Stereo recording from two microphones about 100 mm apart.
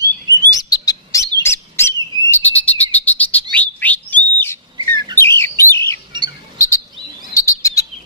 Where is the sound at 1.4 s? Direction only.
25° left (ahead or behind).